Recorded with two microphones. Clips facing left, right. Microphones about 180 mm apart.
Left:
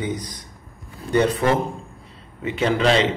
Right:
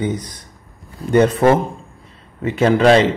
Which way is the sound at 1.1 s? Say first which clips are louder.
Right 6 dB; 50° right (ahead or behind).